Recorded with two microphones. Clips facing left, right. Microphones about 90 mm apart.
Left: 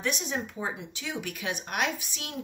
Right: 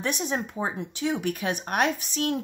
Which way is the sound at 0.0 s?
35° right (ahead or behind).